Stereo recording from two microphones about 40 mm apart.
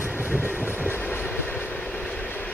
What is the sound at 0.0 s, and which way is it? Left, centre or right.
Train, right.